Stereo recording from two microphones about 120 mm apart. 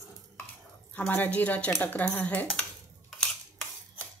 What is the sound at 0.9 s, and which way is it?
Speech, 15° left (ahead or behind).